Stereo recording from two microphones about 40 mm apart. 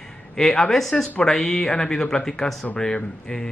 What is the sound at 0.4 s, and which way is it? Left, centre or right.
Speech, centre.